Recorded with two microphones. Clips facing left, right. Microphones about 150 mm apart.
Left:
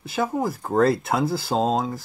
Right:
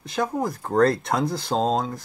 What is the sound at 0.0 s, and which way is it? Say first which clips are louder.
Speech: left 1 dB; 5° left (ahead or behind).